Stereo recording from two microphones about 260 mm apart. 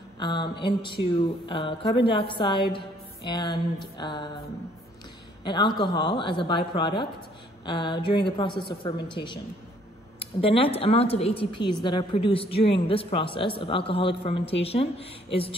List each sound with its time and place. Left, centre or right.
0.2 s a woman's voice: centre
5.4 s a woman's voice: centre